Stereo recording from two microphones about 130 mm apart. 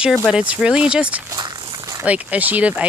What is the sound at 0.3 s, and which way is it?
Speech, 10° right (ahead or behind).